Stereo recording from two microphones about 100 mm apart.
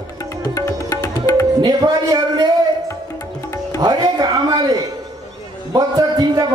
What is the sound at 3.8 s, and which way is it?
Speech, 40° right (ahead or behind).